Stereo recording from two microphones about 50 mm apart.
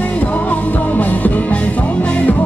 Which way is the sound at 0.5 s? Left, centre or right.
Left.